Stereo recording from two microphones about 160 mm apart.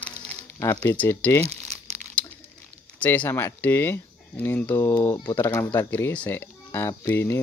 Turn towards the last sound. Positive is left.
turn(degrees=15)  # may be behind; listen again after turning